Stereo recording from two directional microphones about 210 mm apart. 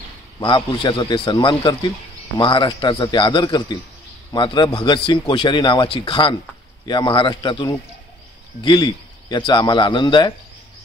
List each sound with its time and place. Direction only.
0.4 s a man's voice: 25° left (ahead or behind)